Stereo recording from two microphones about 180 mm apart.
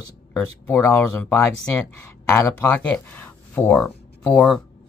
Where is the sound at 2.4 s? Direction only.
10° left (ahead or behind).